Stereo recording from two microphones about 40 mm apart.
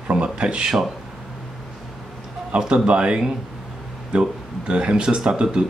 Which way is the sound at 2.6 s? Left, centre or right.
Right.